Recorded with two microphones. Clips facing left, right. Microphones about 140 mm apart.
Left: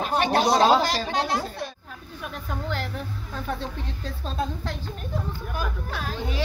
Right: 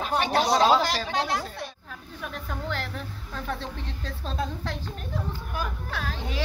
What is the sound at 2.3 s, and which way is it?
Speech, 5° left (ahead or behind).